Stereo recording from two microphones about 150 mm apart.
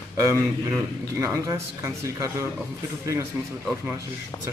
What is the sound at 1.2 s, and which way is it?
A man's voice, 20° right (ahead or behind).